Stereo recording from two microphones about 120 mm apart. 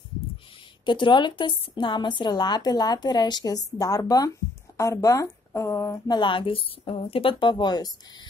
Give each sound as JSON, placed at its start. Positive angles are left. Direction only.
{"t": 0.8, "sound": "a woman's voice", "side_deg": 40}
{"t": 6.0, "sound": "a woman's voice", "side_deg": 40}